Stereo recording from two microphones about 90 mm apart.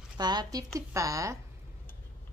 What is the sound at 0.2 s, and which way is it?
A woman's voice, 50° right (ahead or behind).